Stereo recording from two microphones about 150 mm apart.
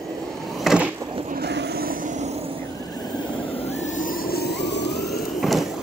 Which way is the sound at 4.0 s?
90° left.